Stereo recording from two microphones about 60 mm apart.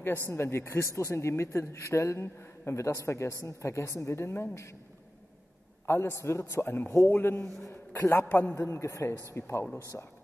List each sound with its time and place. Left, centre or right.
0.3 s a man's voice: left
5.9 s a man's voice: left
7.4 s a man's voice: centre
8.1 s a man's voice: left
8.5 s a man's voice: left